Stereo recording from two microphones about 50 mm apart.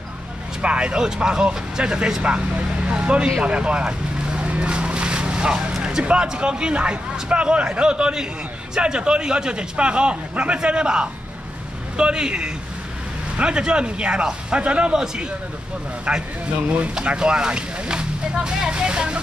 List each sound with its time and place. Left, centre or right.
0.6 s a man's voice: right
16.1 s a man's voice: right